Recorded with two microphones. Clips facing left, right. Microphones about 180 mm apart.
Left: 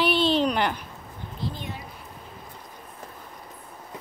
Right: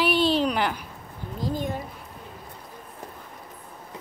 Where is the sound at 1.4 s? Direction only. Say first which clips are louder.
Right 6 dB; 45° right (ahead or behind).